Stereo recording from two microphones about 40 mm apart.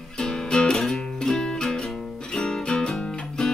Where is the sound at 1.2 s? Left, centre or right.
Centre.